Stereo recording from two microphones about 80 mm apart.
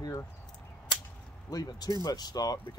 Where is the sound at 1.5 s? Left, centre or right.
Left.